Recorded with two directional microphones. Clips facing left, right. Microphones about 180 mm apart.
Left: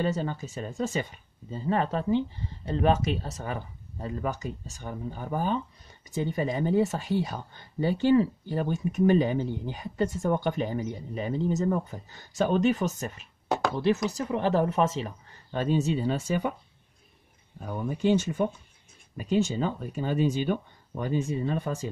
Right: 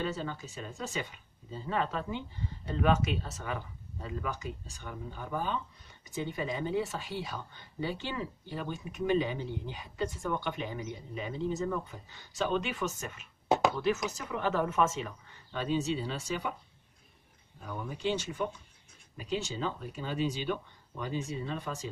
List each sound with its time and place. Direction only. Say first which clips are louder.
0.0 s speech: left 6 dB; 45° left (ahead or behind)
17.6 s speech: left 8 dB; 50° left (ahead or behind)